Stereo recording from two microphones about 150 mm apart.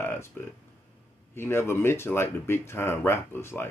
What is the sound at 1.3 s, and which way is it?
Speech, 15° left (ahead or behind).